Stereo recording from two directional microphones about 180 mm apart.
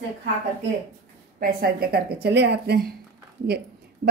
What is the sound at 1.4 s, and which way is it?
A woman's voice, 60° right (ahead or behind).